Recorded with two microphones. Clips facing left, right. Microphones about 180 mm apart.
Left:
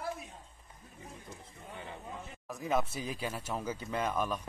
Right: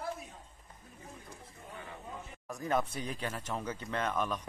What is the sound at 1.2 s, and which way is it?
Speech, 20° left (ahead or behind).